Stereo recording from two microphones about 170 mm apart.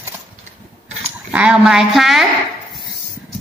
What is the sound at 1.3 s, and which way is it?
Speech, 5° right (ahead or behind).